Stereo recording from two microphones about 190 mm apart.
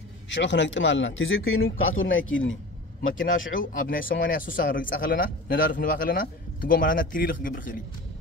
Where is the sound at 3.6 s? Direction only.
45° left (ahead or behind).